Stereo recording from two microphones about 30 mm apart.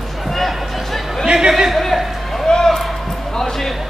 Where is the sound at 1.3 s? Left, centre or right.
Right.